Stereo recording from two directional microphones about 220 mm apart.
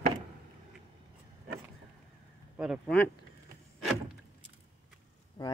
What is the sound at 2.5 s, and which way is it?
Speech, 5° right (ahead or behind).